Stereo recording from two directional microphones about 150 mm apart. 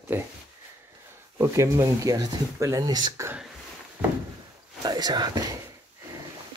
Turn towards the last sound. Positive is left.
turn(degrees=-25)  # may be behind; listen again after turning